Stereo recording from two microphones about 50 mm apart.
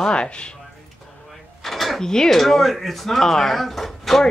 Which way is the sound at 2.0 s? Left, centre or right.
Centre.